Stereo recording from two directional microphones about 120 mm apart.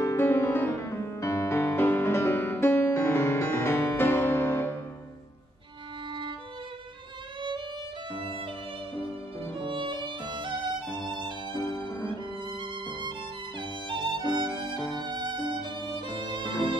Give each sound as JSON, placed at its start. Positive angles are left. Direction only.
{"t": 0.0, "sound": "music", "side_deg": 20}
{"t": 9.5, "sound": "violin", "side_deg": -45}
{"t": 11.5, "sound": "music", "side_deg": 30}
{"t": 13.6, "sound": "music", "side_deg": -40}
{"t": 14.4, "sound": "violin", "side_deg": -40}